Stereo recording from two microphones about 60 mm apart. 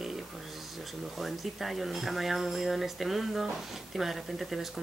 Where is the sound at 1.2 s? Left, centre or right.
Centre.